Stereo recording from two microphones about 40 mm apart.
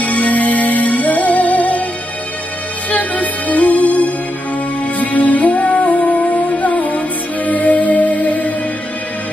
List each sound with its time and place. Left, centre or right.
0.0 s music: left
2.9 s music: left